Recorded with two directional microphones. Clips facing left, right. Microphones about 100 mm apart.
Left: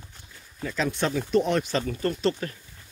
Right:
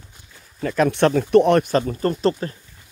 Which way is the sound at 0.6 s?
60° right (ahead or behind).